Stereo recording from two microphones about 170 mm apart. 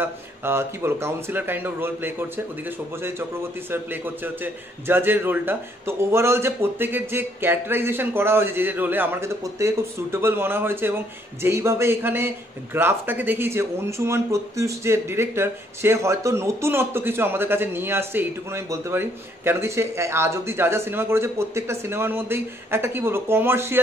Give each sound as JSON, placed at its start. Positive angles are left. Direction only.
{"t": 0.0, "sound": "a man's voice", "side_deg": -15}
{"t": 3.7, "sound": "a man's voice", "side_deg": -10}